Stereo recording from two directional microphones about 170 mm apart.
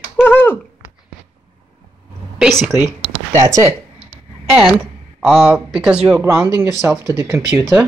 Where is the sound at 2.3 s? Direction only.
5° right (ahead or behind).